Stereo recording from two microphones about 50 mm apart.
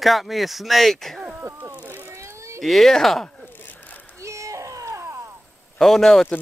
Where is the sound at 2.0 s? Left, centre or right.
Right.